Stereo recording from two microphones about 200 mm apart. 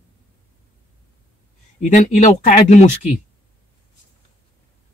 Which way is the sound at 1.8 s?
40° left (ahead or behind).